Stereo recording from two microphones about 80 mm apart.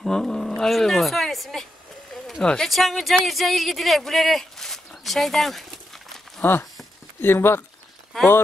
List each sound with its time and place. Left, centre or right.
0.0 s speech: centre
6.4 s speech: left